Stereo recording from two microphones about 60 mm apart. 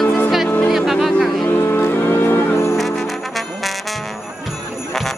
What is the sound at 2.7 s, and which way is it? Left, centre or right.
Trombone, centre.